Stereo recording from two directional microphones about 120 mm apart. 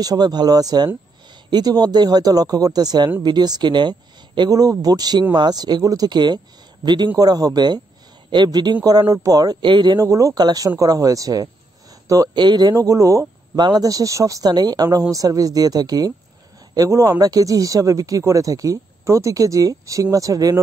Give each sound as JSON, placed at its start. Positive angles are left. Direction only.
{"t": 0.0, "sound": "speech", "side_deg": -35}
{"t": 9.9, "sound": "speech", "side_deg": -25}